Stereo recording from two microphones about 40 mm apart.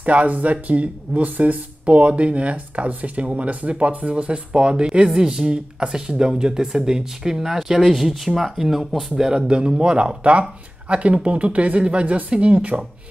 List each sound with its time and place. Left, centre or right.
0.0 s speech: right; by 9.0 s centre
9.5 s speech: right